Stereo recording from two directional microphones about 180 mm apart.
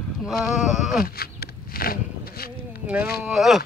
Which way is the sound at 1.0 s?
60° left (ahead or behind).